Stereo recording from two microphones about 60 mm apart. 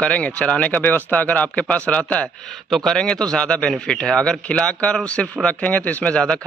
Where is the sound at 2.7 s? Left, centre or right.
Centre.